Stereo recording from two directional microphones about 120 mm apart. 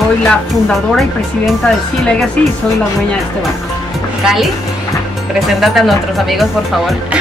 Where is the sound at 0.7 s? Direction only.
Centre (ahead or behind).